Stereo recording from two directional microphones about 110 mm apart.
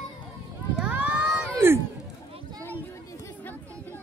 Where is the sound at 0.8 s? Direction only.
10° right (ahead or behind).